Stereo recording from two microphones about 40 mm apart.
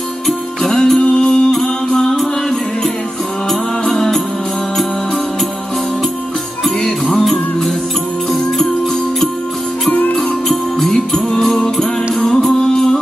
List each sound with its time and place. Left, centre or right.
0.6 s music: centre
1.0 s music: left
3.8 s music: centre
7.1 s music: centre
10.9 s jingle bell: centre
11.3 s music: centre